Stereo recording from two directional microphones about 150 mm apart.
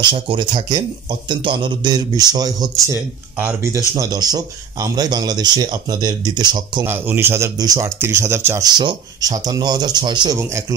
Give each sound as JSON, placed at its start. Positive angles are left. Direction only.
{"t": 0.1, "sound": "a man's voice", "side_deg": -35}
{"t": 6.9, "sound": "a man's voice", "side_deg": -15}